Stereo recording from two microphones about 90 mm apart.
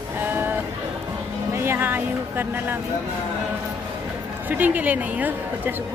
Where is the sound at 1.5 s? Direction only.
25° right (ahead or behind).